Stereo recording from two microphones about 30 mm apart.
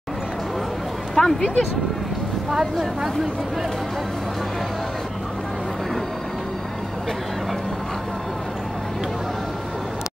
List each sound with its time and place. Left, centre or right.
1.1 s speech: centre
2.5 s speech: centre